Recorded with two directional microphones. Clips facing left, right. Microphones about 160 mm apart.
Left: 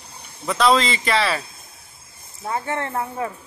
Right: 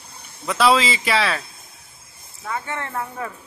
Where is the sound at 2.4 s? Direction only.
30° left (ahead or behind).